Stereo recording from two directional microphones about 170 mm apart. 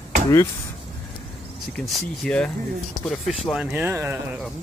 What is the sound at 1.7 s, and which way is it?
Speech, 5° left (ahead or behind).